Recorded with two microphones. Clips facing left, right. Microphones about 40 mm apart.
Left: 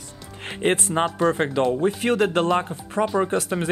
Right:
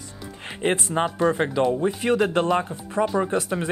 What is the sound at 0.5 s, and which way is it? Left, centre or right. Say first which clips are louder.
Speech: left 2 dB; centre.